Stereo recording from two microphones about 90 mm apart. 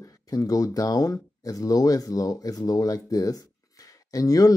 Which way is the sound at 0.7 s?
40° left (ahead or behind).